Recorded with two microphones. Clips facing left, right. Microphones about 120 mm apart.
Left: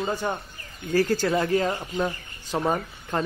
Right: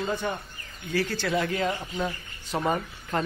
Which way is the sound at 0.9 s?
40° left (ahead or behind).